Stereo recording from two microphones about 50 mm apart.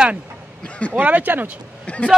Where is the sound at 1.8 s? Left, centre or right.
Left.